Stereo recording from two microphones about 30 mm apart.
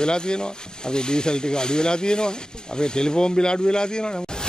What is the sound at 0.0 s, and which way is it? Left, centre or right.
Speech, left.